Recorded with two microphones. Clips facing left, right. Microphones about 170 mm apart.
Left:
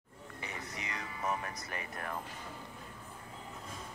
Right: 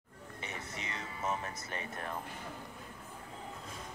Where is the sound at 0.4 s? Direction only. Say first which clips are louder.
Even; 25° right (ahead or behind).